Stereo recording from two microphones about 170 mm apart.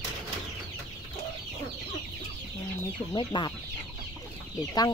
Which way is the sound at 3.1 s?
25° left (ahead or behind).